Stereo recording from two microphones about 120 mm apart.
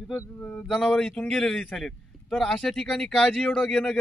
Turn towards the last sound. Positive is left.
turn(degrees=5)  # may be behind; listen again after turning